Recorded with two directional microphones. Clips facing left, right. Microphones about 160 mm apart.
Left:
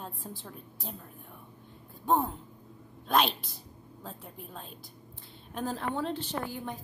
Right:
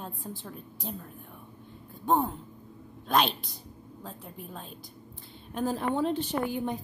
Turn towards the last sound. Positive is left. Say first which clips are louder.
# right 6 dB
turn(degrees=-20)  # may be behind; listen again after turning